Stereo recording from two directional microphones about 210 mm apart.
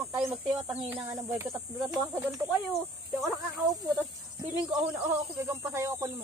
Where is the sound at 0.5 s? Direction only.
15° right (ahead or behind).